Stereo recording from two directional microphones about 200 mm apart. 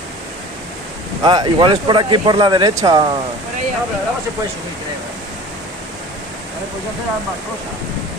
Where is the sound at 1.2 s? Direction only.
20° right (ahead or behind).